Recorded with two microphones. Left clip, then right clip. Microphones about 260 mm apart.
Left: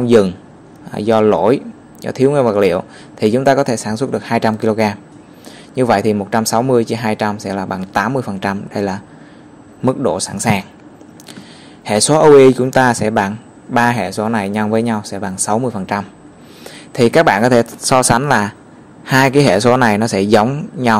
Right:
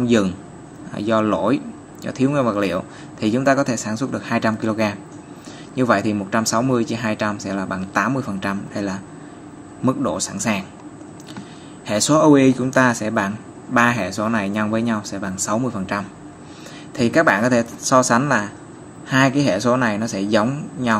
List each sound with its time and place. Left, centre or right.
0.0 s speech: left
11.8 s speech: left